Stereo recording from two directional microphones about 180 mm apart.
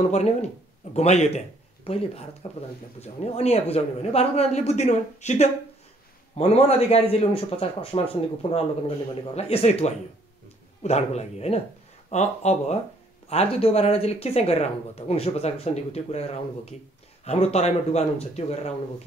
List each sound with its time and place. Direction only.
0.1 s speech: 35° left (ahead or behind)